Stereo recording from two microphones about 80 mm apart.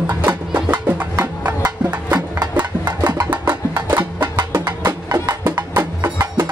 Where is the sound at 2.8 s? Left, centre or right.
Right.